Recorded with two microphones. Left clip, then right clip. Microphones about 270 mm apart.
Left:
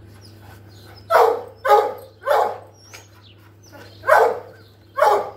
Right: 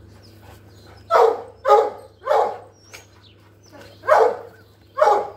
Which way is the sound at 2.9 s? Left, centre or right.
Centre.